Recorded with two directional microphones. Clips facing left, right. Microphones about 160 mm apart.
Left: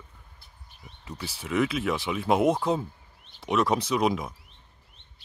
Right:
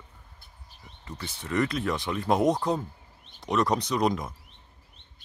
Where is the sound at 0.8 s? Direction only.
10° left (ahead or behind).